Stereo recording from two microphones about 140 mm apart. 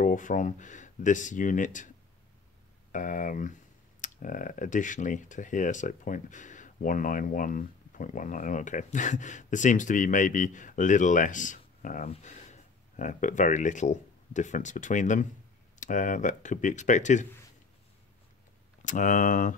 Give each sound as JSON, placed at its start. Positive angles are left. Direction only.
{"t": 0.0, "sound": "speech", "side_deg": 65}
{"t": 2.9, "sound": "speech", "side_deg": 65}
{"t": 12.1, "sound": "speech", "side_deg": 55}
{"t": 18.9, "sound": "speech", "side_deg": 70}